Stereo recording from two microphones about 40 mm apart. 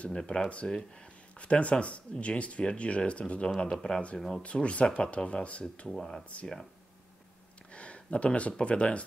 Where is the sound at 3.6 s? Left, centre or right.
Centre.